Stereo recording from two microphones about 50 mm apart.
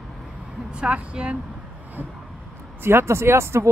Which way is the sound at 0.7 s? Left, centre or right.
Right.